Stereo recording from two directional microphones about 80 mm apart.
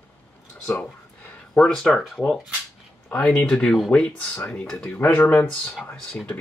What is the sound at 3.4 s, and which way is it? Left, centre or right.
Speech, centre.